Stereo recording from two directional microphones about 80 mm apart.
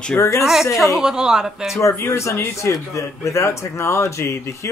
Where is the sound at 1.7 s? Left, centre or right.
Left.